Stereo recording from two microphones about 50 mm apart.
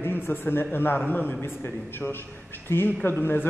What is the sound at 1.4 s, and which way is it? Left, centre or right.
A man's voice, left.